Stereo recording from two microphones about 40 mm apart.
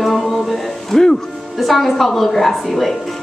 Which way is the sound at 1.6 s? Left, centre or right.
Centre.